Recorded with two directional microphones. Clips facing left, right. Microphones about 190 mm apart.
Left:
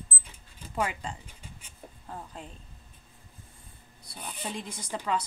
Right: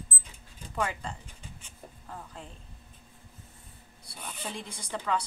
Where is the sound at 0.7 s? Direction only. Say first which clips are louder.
Left 1 dB; 10° left (ahead or behind).